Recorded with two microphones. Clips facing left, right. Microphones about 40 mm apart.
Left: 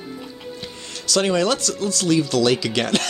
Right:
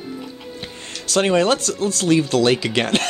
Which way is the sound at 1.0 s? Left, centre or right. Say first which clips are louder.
Right 2 dB; right.